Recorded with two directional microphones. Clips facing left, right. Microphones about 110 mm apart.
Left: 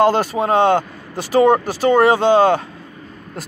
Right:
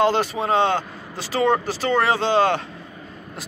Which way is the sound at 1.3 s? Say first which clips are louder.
Left 7 dB; 15° left (ahead or behind).